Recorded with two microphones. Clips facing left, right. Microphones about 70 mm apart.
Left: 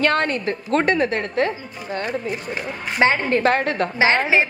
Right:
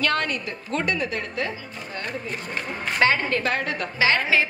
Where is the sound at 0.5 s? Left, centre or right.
Left.